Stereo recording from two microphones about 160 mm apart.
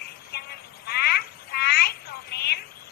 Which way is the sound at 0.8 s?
80° left.